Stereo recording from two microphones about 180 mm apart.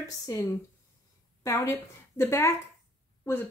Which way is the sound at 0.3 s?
15° left (ahead or behind).